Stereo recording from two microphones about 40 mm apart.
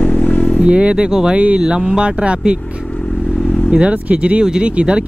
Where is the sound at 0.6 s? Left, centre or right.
Right.